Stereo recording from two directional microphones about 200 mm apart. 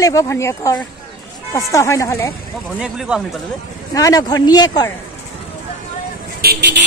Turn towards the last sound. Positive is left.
turn(degrees=-55)  # may be behind; listen again after turning